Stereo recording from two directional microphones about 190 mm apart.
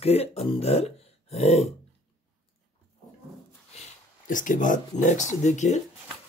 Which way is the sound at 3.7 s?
45° left (ahead or behind).